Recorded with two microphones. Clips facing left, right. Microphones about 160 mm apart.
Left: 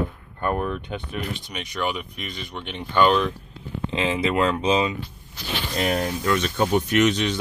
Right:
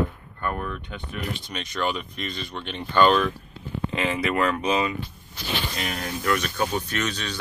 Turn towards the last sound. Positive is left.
turn(degrees=20)  # may be behind; listen again after turning